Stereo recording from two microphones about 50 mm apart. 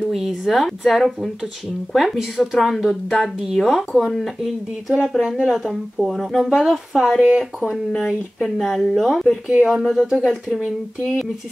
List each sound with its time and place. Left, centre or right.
0.1 s speech: centre
8.0 s speech: centre
10.0 s speech: centre